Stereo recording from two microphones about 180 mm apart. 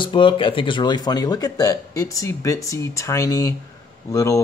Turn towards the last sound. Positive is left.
turn(degrees=15)  # may be behind; listen again after turning